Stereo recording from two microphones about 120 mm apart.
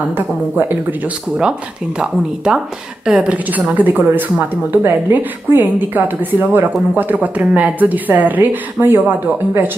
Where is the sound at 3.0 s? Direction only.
10° right (ahead or behind).